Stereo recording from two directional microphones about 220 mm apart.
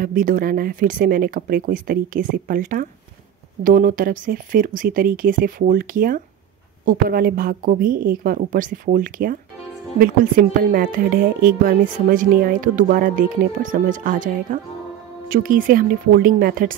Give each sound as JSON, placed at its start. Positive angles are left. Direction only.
{"t": 0.0, "sound": "a woman's voice", "side_deg": -40}